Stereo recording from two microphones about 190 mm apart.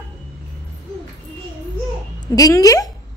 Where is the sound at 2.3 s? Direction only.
20° left (ahead or behind).